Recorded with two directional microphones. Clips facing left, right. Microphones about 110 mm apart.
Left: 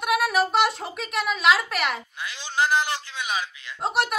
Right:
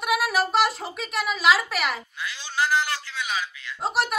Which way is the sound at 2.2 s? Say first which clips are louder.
Left 2 dB; 20° left (ahead or behind).